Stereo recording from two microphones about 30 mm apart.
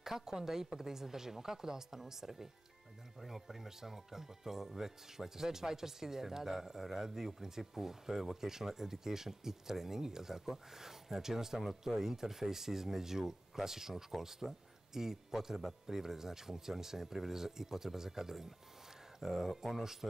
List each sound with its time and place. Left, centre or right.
0.0 s speech: centre